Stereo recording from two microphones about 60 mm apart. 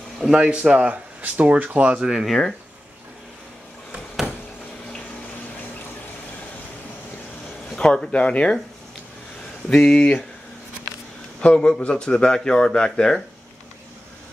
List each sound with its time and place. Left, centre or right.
0.2 s speech: centre
2.0 s speech: centre
2.2 s speech: centre
7.7 s a man's voice: centre
9.7 s a man's voice: centre
11.4 s a man's voice: centre